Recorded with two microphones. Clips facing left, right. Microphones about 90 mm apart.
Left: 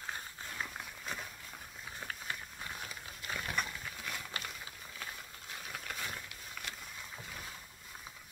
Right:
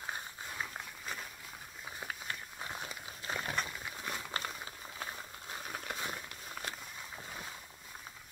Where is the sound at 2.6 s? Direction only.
25° right (ahead or behind).